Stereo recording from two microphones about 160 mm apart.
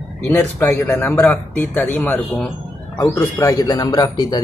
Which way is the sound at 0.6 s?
10° left (ahead or behind).